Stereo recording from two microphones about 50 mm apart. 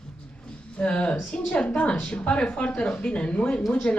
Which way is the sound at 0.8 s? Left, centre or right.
Left.